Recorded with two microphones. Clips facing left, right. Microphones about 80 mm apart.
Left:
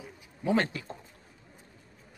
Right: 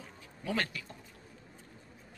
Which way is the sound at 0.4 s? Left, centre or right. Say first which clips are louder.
Left 7 dB; left.